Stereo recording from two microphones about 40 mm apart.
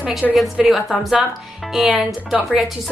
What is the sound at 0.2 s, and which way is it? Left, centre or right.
Speech, centre.